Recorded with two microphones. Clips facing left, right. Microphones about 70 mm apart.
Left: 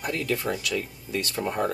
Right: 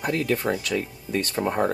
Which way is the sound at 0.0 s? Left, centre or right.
Right.